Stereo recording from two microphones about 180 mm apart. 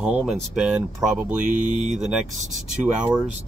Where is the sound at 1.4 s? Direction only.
45° right (ahead or behind).